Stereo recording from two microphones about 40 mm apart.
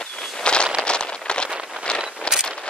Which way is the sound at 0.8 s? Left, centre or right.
Left.